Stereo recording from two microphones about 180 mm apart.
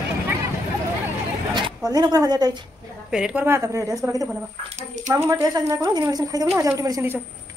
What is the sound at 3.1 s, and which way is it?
Speech, 5° right (ahead or behind).